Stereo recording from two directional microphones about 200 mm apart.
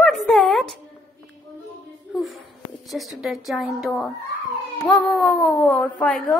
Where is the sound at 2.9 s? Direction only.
Centre (ahead or behind).